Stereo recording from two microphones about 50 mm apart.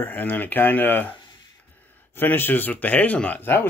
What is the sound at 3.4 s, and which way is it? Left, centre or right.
Speech, left.